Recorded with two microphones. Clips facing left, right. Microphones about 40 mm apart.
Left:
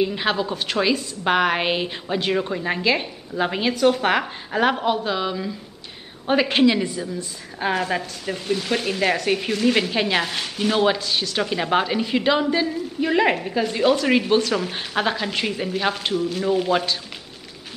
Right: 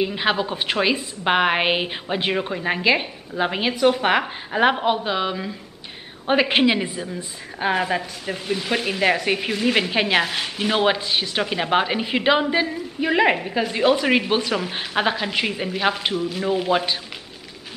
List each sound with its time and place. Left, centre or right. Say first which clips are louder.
0.0 s a woman's voice: even; centre
7.6 s speech: right 1 dB; centre